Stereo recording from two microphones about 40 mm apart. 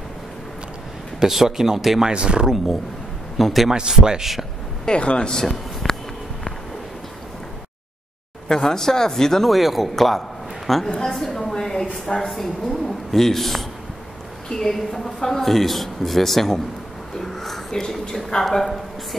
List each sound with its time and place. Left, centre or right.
1.2 s speech: centre
2.1 s speech: right
2.4 s speech: centre
3.7 s speech: centre
4.8 s speech: left; by 5.9 s centre
8.5 s a man's voice: centre
17.2 s a sound: centre
18.4 s speech: centre